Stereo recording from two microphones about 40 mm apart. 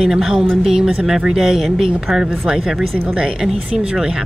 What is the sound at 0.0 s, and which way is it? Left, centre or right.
Speech, centre.